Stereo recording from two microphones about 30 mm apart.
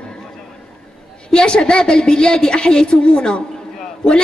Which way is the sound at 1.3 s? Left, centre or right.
Left.